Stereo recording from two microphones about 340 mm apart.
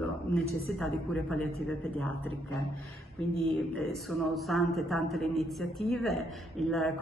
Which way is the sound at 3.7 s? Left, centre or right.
Centre.